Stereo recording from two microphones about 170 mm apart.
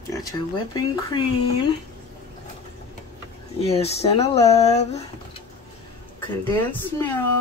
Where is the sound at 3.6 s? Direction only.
35° left (ahead or behind).